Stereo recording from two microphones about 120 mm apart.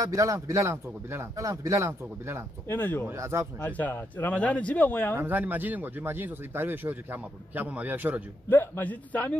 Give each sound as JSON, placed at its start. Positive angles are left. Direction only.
{"t": 0.0, "sound": "speech", "side_deg": -25}
{"t": 2.7, "sound": "a man's voice", "side_deg": 15}
{"t": 3.1, "sound": "speech", "side_deg": -20}
{"t": 3.6, "sound": "a man's voice", "side_deg": 15}
{"t": 5.2, "sound": "speech", "side_deg": -15}
{"t": 8.5, "sound": "a man's voice", "side_deg": 15}